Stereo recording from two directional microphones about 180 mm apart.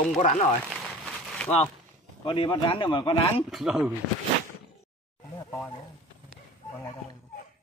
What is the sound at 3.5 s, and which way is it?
Speech, centre (ahead or behind).